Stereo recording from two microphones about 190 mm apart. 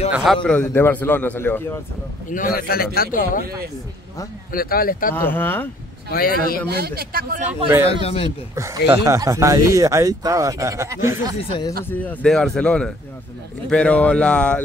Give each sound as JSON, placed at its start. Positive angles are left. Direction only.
{"t": 0.1, "sound": "a man's voice", "side_deg": 0}
{"t": 2.2, "sound": "a man's voice", "side_deg": 45}
{"t": 4.5, "sound": "a man's voice", "side_deg": 50}
{"t": 5.1, "sound": "a man's voice", "side_deg": 10}
{"t": 6.0, "sound": "a man's voice", "side_deg": 50}
{"t": 6.7, "sound": "speech", "side_deg": -55}
{"t": 8.0, "sound": "speech", "side_deg": 30}
{"t": 8.5, "sound": "speech", "side_deg": -15}
{"t": 11.8, "sound": "a man's voice", "side_deg": 10}